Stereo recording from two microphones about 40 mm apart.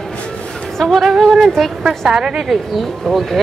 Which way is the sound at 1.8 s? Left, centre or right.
Centre.